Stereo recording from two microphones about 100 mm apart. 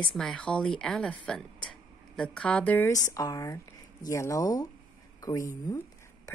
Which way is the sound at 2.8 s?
35° left (ahead or behind).